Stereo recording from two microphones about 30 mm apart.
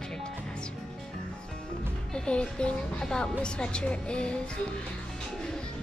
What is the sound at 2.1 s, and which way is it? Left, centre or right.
Music, left.